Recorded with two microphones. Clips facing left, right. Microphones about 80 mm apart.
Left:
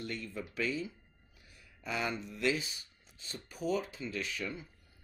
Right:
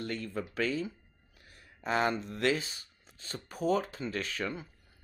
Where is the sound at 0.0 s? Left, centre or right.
Right.